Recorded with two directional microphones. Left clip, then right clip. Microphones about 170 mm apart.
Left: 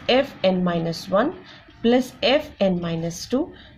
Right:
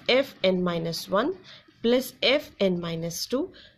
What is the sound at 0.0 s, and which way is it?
A woman's voice, 45° right (ahead or behind).